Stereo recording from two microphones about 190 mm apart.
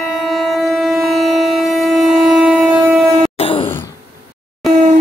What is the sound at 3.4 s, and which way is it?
Wail, 30° left (ahead or behind).